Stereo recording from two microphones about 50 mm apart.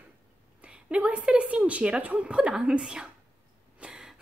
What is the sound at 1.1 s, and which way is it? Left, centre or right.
A woman's voice, right.